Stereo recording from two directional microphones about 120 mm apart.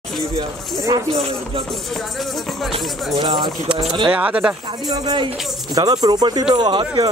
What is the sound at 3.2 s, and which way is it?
Speech, 40° right (ahead or behind).